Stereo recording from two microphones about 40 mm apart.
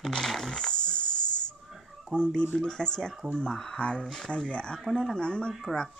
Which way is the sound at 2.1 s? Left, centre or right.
Left.